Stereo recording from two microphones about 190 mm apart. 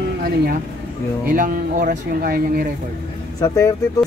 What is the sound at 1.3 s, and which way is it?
Speech, 45° right (ahead or behind).